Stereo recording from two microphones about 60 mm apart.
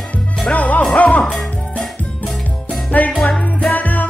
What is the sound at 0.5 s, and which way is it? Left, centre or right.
Speech, left.